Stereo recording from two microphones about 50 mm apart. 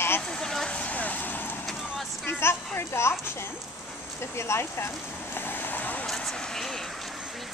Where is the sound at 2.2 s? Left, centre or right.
Left.